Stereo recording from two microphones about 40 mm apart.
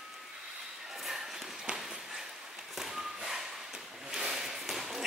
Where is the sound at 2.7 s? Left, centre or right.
Centre.